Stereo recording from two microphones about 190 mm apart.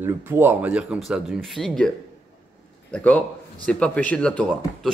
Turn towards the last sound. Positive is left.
turn(degrees=5)  # may be behind; listen again after turning